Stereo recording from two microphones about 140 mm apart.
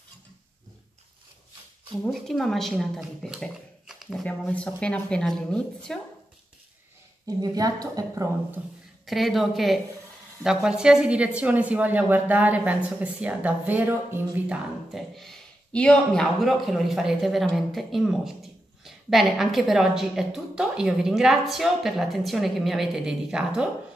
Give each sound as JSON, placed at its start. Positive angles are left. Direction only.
{"t": 2.0, "sound": "speech", "side_deg": 0}
{"t": 7.2, "sound": "a woman's voice", "side_deg": -25}
{"t": 9.0, "sound": "speech", "side_deg": 0}
{"t": 14.5, "sound": "speech", "side_deg": 0}